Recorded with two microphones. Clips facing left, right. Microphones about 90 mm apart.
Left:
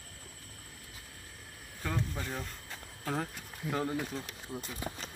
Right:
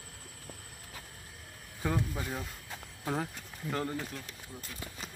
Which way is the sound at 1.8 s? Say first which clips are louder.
Right 3 dB; 15° right (ahead or behind).